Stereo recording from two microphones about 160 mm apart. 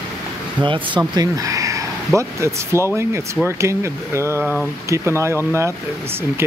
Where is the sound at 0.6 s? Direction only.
30° right (ahead or behind).